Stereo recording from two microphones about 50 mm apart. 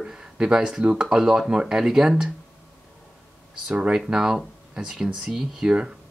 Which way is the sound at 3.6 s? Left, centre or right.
Centre.